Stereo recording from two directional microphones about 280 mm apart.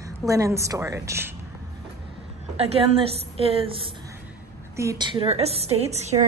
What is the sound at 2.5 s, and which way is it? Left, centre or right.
A woman's voice, right.